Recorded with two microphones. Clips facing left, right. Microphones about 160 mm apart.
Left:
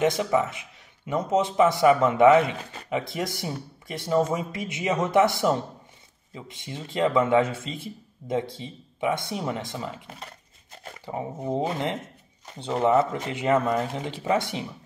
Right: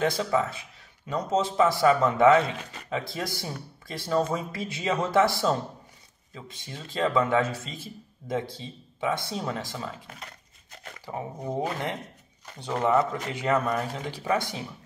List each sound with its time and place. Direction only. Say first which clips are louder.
0.0 s a man's voice: left 3 dB; 20° left (ahead or behind)